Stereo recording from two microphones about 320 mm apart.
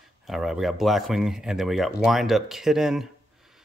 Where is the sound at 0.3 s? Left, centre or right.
Centre.